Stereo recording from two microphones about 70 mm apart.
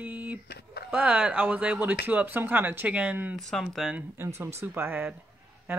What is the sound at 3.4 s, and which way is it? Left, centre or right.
Speech, centre.